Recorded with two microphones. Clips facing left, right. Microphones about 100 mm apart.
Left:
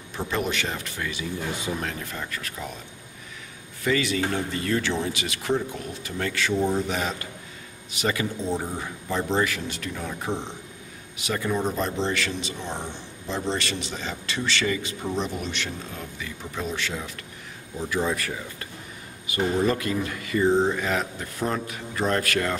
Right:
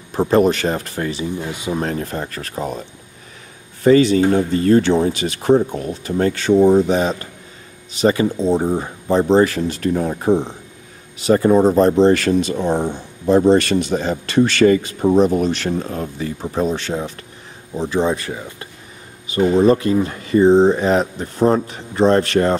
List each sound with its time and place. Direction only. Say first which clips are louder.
0.1 s speech: right 13 dB; 40° right (ahead or behind)